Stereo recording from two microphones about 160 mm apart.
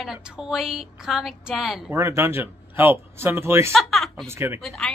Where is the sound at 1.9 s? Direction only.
15° right (ahead or behind).